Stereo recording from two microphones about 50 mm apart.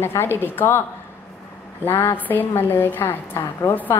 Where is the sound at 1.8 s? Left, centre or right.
Left.